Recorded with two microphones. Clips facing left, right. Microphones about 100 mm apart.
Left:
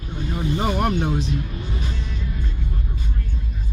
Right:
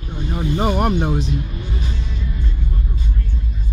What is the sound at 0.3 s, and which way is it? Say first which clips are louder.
Speech: right 3 dB; 20° right (ahead or behind).